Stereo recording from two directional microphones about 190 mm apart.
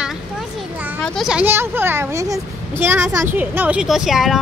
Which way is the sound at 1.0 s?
Centre (ahead or behind).